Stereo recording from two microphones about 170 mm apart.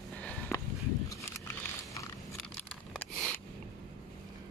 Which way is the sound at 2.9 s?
5° left (ahead or behind).